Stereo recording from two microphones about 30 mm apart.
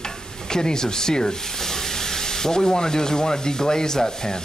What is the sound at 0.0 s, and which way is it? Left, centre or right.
Stir, left.